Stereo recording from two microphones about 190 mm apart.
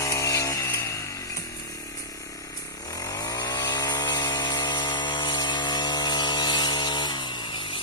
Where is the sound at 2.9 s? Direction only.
20° left (ahead or behind).